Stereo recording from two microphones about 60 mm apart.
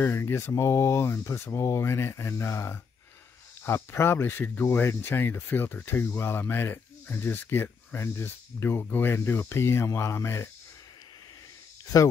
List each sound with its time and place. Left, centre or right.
0.0 s speech: left
11.9 s speech: left